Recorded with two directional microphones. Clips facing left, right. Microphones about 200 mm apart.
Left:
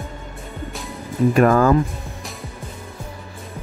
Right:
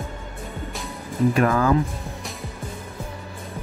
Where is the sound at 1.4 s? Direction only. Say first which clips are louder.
Left 7 dB; 50° left (ahead or behind).